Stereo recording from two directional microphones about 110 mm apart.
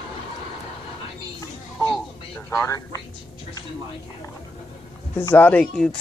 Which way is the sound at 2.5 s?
25° left (ahead or behind).